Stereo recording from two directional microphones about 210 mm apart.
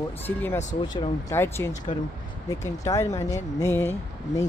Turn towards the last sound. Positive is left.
turn(degrees=10)  # may be behind; listen again after turning